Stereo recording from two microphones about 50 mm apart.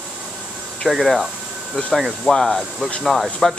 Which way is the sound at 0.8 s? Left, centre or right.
Centre.